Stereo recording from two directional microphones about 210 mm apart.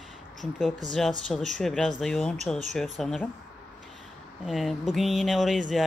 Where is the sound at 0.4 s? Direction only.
Centre (ahead or behind).